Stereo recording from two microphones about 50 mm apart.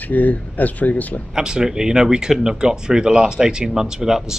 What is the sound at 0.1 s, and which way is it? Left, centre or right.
Speech, left.